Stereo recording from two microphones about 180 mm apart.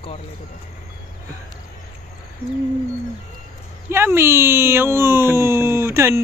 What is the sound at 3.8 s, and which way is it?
Speech, 15° right (ahead or behind).